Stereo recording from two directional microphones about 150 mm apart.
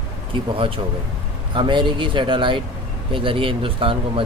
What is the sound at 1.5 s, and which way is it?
Speech, 35° right (ahead or behind).